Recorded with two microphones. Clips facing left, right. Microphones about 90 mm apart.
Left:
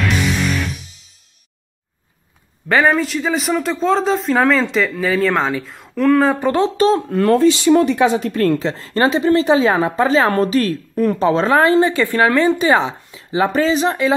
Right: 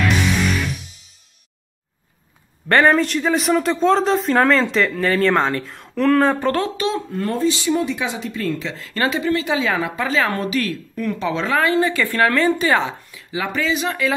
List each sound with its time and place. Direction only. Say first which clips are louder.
2.7 s speech: even; centre (ahead or behind)
6.4 s speech: left 4 dB; 20° left (ahead or behind)
7.1 s speech: left 8 dB; 75° left (ahead or behind); by 8.5 s 55° left (ahead or behind)
8.5 s speech: left 6 dB; 35° left (ahead or behind); by 13.2 s 20° left (ahead or behind)
13.3 s speech: left 6 dB; 35° left (ahead or behind)